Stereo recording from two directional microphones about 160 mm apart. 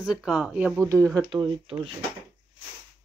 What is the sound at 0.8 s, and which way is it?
Speech, 20° right (ahead or behind).